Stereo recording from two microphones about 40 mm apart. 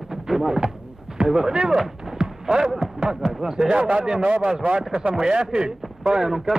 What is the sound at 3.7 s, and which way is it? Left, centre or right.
A man's voice, right.